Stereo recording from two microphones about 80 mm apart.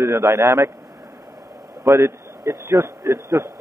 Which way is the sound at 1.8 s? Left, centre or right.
Right.